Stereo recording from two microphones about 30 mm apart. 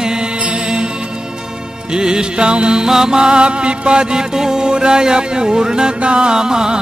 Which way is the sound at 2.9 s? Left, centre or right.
Right.